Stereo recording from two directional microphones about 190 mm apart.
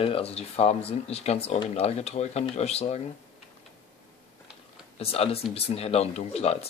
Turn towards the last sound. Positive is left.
turn(degrees=35)  # may be behind; listen again after turning